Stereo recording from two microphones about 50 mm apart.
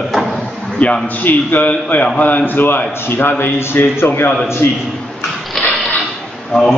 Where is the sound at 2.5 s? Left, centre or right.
Left.